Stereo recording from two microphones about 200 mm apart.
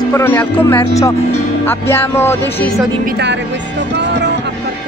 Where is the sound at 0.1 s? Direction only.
10° left (ahead or behind).